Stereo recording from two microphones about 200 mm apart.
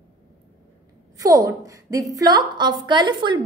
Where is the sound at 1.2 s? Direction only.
15° right (ahead or behind).